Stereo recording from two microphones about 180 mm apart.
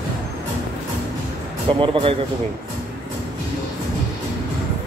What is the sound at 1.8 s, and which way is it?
Speech, 30° right (ahead or behind).